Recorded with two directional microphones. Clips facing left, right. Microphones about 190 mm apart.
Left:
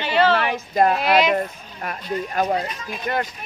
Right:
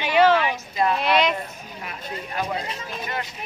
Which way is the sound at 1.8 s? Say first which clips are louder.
Left 8 dB; 45° left (ahead or behind).